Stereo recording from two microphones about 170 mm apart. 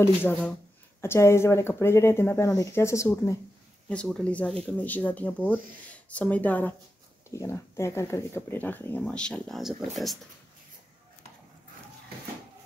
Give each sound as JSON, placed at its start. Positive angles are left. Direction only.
{"t": 0.0, "sound": "speech", "side_deg": 15}
{"t": 3.9, "sound": "speech", "side_deg": 5}